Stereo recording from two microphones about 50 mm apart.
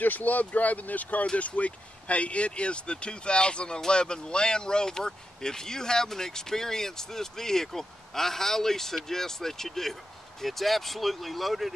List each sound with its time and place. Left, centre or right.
0.0 s speech: left; by 11.7 s centre